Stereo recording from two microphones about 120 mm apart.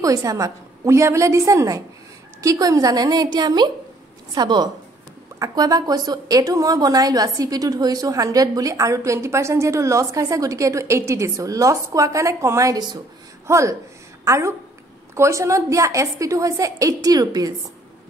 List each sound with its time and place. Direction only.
0.0 s a woman's voice: 30° right (ahead or behind)
13.5 s a woman's voice: 25° right (ahead or behind)